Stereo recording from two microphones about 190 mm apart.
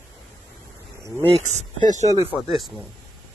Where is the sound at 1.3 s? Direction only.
35° right (ahead or behind).